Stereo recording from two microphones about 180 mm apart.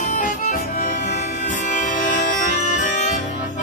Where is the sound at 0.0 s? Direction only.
45° left (ahead or behind).